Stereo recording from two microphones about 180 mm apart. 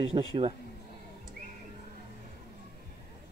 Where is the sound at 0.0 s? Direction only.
30° right (ahead or behind).